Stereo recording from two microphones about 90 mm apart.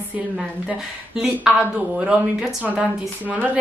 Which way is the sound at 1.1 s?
5° right (ahead or behind).